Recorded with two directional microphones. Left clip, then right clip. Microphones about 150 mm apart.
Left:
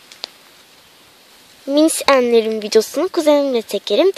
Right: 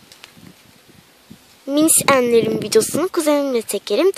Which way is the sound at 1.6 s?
10° right (ahead or behind).